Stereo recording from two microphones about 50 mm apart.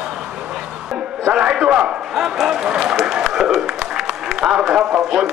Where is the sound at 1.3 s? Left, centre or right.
Centre.